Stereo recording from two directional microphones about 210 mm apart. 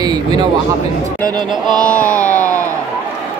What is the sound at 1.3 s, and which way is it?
Music, 20° right (ahead or behind).